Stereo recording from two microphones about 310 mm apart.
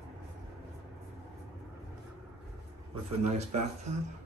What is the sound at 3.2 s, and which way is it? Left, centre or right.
Speech, right.